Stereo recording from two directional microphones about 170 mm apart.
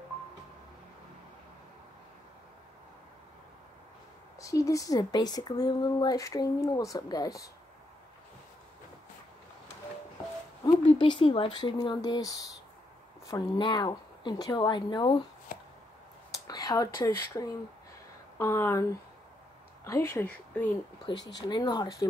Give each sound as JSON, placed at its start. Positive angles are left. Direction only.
{"t": 4.4, "sound": "speech", "side_deg": 20}
{"t": 10.9, "sound": "speech", "side_deg": 30}
{"t": 15.5, "sound": "a sound", "side_deg": 50}
{"t": 16.3, "sound": "speech", "side_deg": 20}
{"t": 21.4, "sound": "speech", "side_deg": 25}